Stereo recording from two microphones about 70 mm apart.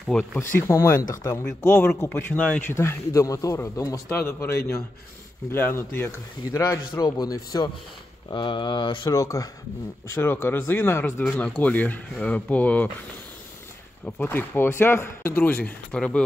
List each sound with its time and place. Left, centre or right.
0.4 s speech: left
1.6 s speech: left
2.7 s speech: left
4.1 s speech: left
7.0 s speech: left
8.3 s speech: left
9.1 s speech: left
10.1 s speech: left
11.4 s speech: centre
14.0 s speech: left
15.9 s speech: centre